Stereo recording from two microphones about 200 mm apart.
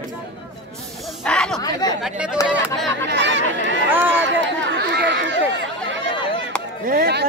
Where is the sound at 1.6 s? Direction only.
20° left (ahead or behind).